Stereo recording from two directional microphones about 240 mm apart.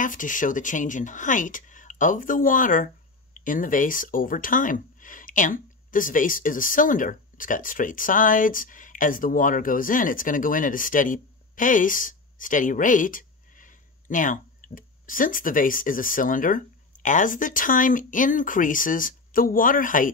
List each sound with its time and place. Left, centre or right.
0.0 s speech: left